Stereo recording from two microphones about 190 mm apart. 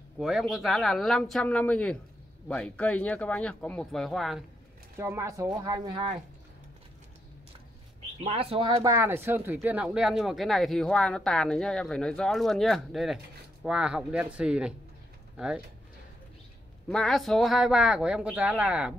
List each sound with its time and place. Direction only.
0.2 s speech: centre (ahead or behind)
4.9 s speech: 15° right (ahead or behind)
8.2 s speech: 30° right (ahead or behind)
8.9 s speech: 15° right (ahead or behind)
16.9 s speech: centre (ahead or behind)